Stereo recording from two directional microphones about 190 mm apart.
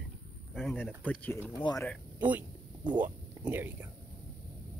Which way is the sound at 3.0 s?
10° right (ahead or behind).